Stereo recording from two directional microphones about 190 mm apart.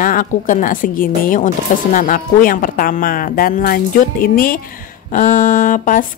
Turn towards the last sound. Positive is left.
turn(degrees=45)  # may be behind; listen again after turning